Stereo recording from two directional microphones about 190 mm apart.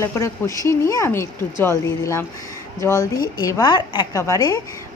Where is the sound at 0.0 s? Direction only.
15° left (ahead or behind).